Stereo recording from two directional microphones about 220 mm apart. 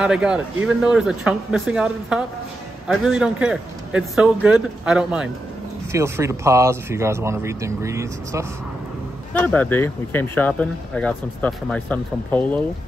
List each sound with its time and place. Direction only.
0.0 s a man's voice: 5° right (ahead or behind)
9.3 s speech: 5° left (ahead or behind)